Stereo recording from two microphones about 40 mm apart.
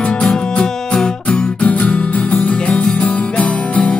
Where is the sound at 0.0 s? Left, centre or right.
Left.